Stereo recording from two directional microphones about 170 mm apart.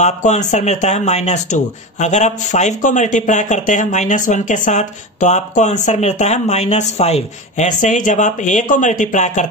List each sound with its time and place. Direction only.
0.0 s speech: 45° left (ahead or behind)